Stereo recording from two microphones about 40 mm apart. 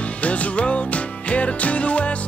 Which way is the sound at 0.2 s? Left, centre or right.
Left.